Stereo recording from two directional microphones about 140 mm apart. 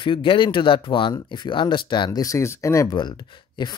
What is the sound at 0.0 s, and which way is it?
Speech, 35° left (ahead or behind).